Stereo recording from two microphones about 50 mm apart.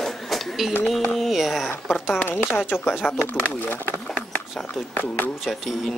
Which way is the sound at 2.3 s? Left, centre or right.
Left.